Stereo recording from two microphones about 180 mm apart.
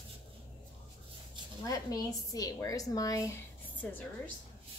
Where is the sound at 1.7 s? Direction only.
20° left (ahead or behind).